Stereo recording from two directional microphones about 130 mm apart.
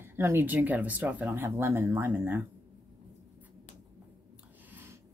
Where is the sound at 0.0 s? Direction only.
15° right (ahead or behind).